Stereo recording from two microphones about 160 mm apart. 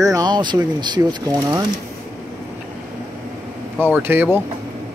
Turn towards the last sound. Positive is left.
turn(degrees=-15)  # may be behind; listen again after turning